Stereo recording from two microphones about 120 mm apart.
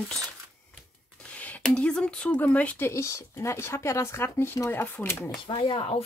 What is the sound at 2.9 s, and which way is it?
Speech, 25° left (ahead or behind).